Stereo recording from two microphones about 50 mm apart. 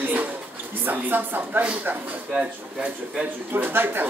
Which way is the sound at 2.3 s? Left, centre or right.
Right.